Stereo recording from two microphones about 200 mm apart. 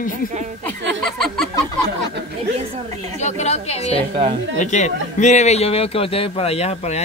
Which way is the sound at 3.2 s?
35° left (ahead or behind).